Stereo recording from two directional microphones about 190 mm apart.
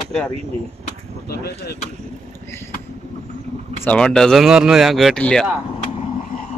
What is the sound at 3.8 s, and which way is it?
Speech, 5° left (ahead or behind).